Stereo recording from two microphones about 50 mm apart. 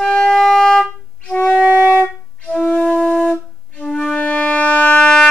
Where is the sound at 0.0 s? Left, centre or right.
Centre.